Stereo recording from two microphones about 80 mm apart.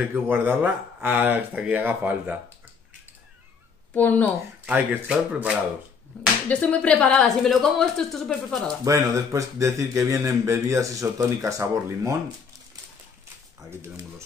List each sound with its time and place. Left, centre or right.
0.0 s speech: centre
3.9 s speech: left
4.6 s speech: centre
6.5 s speech: centre
8.8 s speech: right
13.7 s speech: right